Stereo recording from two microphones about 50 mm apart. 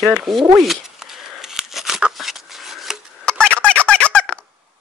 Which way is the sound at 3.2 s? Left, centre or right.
Left.